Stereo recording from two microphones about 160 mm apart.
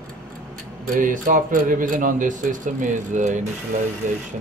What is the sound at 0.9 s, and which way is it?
A man's voice, 55° right (ahead or behind).